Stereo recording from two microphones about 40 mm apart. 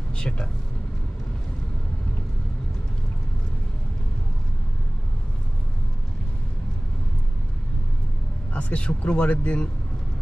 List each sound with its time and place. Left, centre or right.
0.1 s speech: left
8.5 s speech: left